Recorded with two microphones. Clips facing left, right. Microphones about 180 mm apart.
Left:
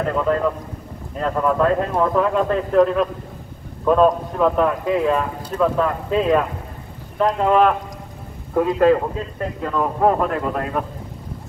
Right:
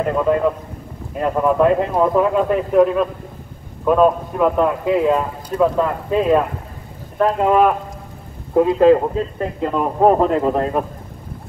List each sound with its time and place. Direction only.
0.0 s speech: 15° right (ahead or behind)
8.5 s a man's voice: 25° right (ahead or behind)